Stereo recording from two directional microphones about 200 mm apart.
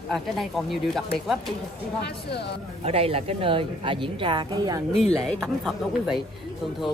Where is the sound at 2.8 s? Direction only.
30° right (ahead or behind).